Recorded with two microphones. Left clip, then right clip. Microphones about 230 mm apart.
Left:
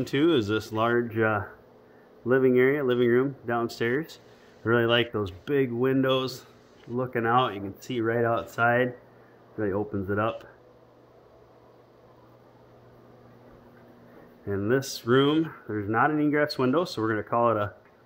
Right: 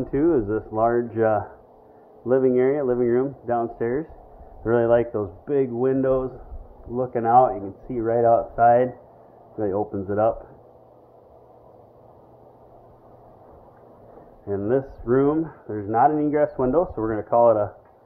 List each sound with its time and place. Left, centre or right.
0.0 s speech: left
14.5 s speech: centre